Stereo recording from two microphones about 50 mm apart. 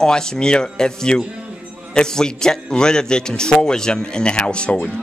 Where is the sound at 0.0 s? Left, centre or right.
Centre.